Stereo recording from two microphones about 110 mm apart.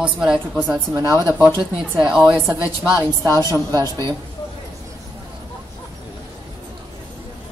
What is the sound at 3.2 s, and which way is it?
Speech, 25° left (ahead or behind).